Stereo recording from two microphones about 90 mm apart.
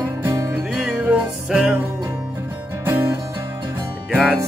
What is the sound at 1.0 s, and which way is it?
Music, 15° right (ahead or behind).